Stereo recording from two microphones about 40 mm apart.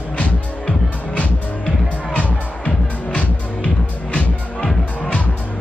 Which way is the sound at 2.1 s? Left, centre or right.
Left.